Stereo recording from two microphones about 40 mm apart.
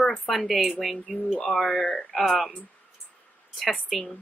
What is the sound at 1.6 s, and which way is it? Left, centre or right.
Speech, centre.